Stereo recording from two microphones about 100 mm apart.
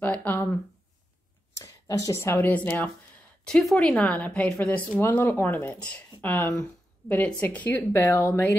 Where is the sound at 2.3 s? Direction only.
15° left (ahead or behind).